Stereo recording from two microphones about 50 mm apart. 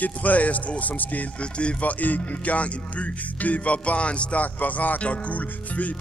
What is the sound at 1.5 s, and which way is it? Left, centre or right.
Speech, left.